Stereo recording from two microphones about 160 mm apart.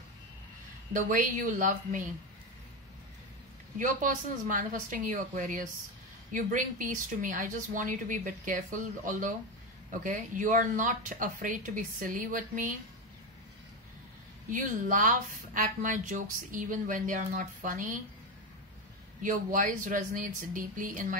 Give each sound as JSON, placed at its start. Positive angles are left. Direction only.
{"t": 0.9, "sound": "speech", "side_deg": -55}
{"t": 3.7, "sound": "speech", "side_deg": -55}
{"t": 14.5, "sound": "speech", "side_deg": -55}
{"t": 19.2, "sound": "speech", "side_deg": -55}